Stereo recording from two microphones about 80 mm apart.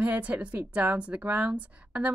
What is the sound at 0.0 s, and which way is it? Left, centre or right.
A woman's voice, centre.